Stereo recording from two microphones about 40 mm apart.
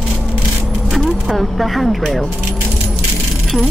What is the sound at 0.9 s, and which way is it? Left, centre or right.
Speech, centre.